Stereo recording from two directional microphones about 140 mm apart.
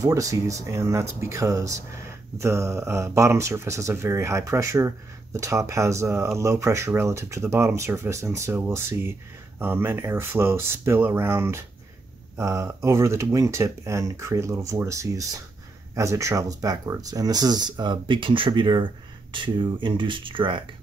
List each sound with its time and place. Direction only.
0.0 s speech: 25° right (ahead or behind)